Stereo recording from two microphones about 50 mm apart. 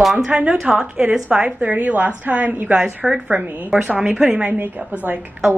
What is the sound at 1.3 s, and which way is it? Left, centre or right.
A woman's voice, right.